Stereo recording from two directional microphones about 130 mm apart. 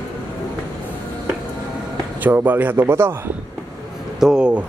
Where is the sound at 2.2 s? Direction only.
15° right (ahead or behind).